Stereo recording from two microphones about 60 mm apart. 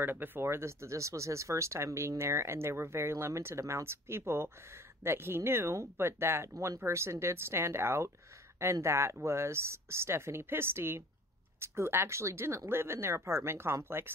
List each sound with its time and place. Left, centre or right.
0.0 s speech: right